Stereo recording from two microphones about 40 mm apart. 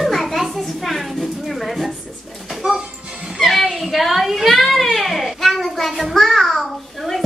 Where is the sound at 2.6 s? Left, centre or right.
Right.